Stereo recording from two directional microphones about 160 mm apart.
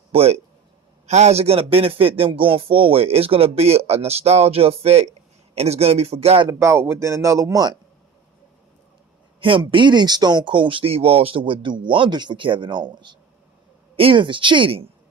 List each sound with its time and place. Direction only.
0.1 s a man's voice: 40° right (ahead or behind)
6.6 s speech: 15° right (ahead or behind)
9.7 s a man's voice: 30° right (ahead or behind)